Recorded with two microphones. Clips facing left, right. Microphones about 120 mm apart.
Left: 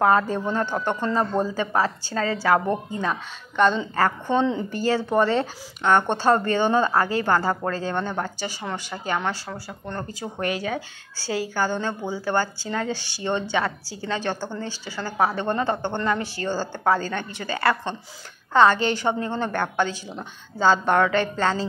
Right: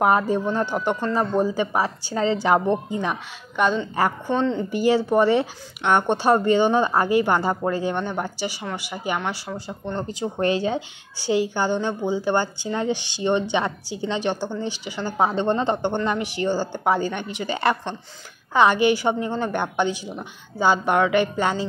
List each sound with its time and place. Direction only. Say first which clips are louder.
0.0 s speech: right 1 dB; 15° right (ahead or behind)
4.3 s speech: even; centre (ahead or behind)
4.6 s speech: right 4 dB; 15° right (ahead or behind)
9.9 s a woman's voice: right 5 dB; 20° right (ahead or behind)